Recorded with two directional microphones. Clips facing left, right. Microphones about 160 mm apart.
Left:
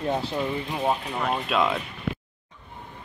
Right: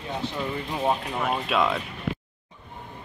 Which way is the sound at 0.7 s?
Centre (ahead or behind).